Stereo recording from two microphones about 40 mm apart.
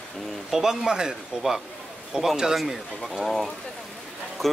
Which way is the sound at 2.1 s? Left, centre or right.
Centre.